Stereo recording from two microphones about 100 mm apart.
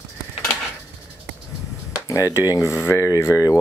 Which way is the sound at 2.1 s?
30° left (ahead or behind).